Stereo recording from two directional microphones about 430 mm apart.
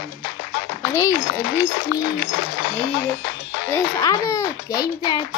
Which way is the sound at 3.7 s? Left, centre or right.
Centre.